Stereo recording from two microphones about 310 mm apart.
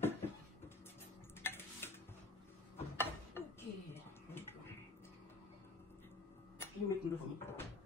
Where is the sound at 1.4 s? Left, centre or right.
Centre.